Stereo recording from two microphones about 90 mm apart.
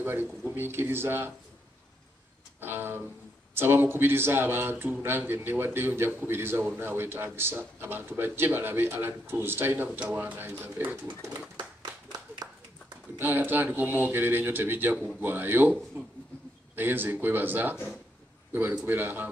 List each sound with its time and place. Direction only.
0.0 s speech: 25° right (ahead or behind)
2.6 s speech: 25° right (ahead or behind)
13.2 s a man's voice: 20° right (ahead or behind)